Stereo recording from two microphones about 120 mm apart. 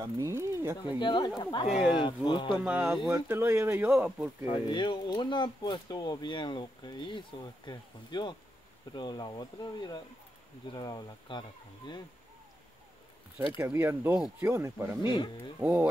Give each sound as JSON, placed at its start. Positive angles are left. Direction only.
{"t": 0.2, "sound": "speech", "side_deg": -25}
{"t": 0.9, "sound": "speech", "side_deg": 40}
{"t": 2.6, "sound": "speech", "side_deg": -10}
{"t": 4.5, "sound": "speech", "side_deg": 40}
{"t": 13.7, "sound": "speech", "side_deg": -20}
{"t": 15.0, "sound": "speech", "side_deg": 40}
{"t": 15.6, "sound": "speech", "side_deg": -10}